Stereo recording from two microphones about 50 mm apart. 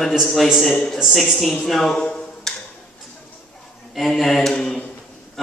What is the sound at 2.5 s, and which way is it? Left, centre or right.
Tick-tock, centre.